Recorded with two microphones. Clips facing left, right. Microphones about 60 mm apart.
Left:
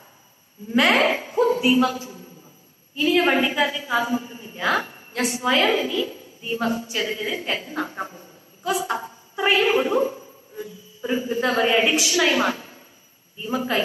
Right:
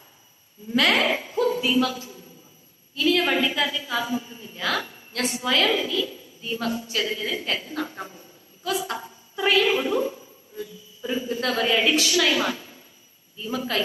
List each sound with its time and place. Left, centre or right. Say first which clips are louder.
0.7 s a woman's voice: left 3 dB; left